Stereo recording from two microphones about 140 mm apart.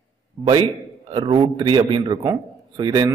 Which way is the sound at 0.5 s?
35° right (ahead or behind).